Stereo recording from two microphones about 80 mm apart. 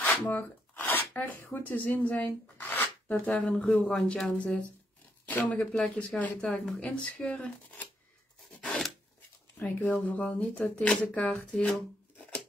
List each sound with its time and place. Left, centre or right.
0.0 s speech: left
8.6 s filing: centre
9.6 s speech: left
11.5 s speech: centre